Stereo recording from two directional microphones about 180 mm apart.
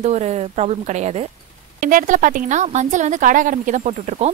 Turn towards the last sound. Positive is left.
turn(degrees=-40)  # may be behind; listen again after turning